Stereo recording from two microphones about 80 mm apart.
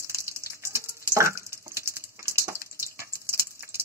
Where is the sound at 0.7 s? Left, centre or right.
Right.